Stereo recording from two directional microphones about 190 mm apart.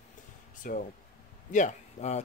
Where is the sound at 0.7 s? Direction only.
45° left (ahead or behind).